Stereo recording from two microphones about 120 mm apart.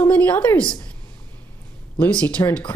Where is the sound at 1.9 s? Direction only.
10° left (ahead or behind).